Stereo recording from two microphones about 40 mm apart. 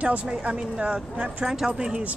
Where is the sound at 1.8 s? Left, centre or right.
Right.